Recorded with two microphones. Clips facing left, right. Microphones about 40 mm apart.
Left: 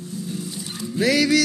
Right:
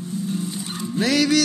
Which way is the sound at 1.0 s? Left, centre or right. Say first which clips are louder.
Left 1 dB; right.